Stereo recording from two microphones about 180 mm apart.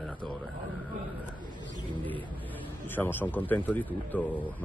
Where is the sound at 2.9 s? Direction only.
10° left (ahead or behind).